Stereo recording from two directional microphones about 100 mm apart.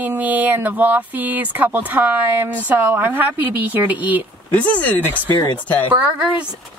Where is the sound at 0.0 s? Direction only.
15° right (ahead or behind).